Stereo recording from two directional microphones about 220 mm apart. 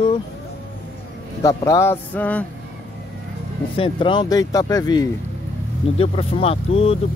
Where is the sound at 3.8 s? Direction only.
25° left (ahead or behind).